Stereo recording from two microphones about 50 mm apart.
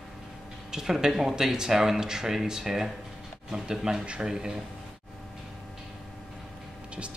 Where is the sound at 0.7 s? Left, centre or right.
Centre.